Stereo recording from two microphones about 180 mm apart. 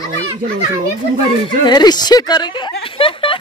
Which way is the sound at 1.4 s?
25° left (ahead or behind).